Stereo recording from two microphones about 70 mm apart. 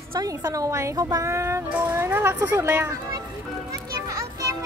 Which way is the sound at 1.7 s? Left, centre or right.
Right.